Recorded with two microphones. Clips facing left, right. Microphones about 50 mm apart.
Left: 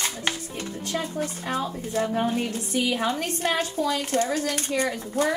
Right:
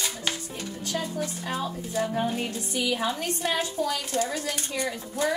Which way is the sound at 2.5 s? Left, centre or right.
Left.